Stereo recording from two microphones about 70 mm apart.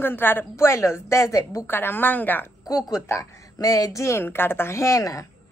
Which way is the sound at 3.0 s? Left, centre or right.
Left.